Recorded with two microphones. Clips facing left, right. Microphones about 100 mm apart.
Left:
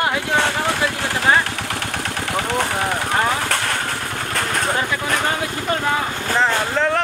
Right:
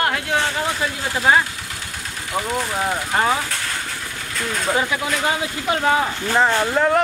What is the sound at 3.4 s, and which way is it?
Vehicle, 65° left (ahead or behind).